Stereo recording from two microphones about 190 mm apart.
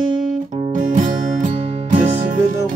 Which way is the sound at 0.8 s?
40° right (ahead or behind).